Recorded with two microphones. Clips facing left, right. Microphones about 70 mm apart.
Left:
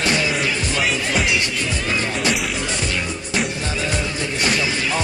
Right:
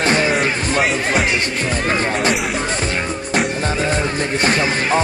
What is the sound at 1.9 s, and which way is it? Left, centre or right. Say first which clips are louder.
Music: right 4 dB; right.